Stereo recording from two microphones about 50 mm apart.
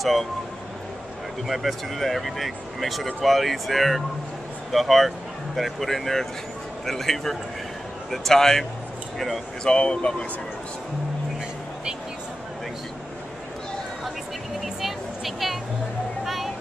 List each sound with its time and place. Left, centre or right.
0.0 s speech: centre
1.5 s speech: centre
9.7 s speech: centre
14.6 s music: centre